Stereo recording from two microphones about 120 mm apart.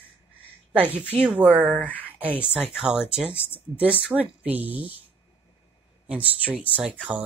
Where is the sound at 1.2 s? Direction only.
10° right (ahead or behind).